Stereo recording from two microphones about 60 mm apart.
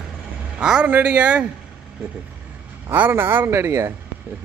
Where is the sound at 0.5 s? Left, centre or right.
Centre.